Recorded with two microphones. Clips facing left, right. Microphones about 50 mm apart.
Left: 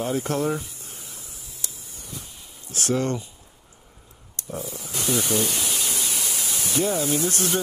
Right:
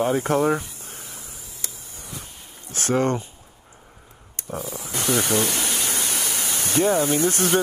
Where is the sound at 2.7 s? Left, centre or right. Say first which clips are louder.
Right 3 dB; right.